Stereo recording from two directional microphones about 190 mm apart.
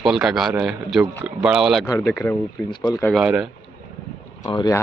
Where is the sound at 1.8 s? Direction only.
20° left (ahead or behind).